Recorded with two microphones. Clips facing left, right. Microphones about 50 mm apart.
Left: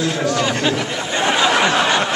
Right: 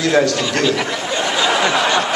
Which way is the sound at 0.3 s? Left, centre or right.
Left.